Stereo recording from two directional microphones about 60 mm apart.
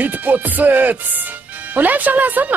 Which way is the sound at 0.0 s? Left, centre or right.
Right.